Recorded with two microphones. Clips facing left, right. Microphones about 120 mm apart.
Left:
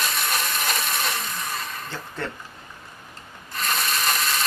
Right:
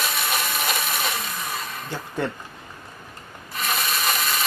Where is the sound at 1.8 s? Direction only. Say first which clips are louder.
Right 4 dB; 15° right (ahead or behind).